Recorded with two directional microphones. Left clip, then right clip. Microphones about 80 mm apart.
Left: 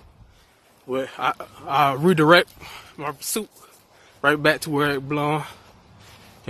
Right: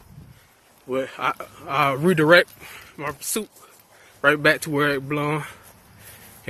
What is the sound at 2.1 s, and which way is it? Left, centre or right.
Speech, left.